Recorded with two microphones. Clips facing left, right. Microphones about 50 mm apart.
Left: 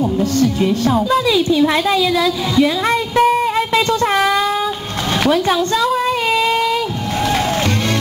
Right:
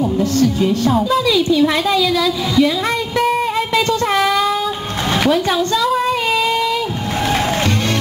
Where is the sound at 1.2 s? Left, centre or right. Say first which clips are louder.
Even; centre.